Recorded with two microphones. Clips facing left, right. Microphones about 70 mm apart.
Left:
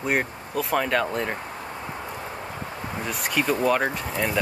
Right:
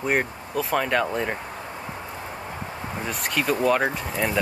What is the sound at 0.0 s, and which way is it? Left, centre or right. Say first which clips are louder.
Speech: right 1 dB; centre.